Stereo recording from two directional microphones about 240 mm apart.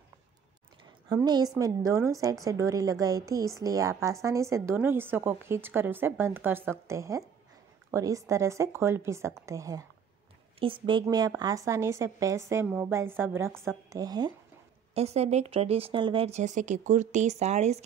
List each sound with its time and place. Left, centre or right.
1.0 s a woman's voice: centre
15.0 s speech: right